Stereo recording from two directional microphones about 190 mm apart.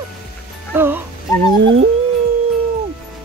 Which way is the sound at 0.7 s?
10° right (ahead or behind).